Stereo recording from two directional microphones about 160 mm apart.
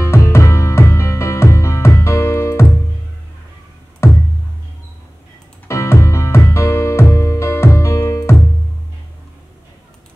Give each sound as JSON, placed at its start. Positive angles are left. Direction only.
{"t": 0.0, "sound": "music", "side_deg": 15}
{"t": 5.7, "sound": "music", "side_deg": 20}